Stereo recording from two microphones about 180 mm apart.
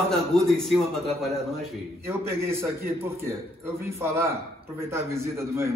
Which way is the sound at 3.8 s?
15° right (ahead or behind).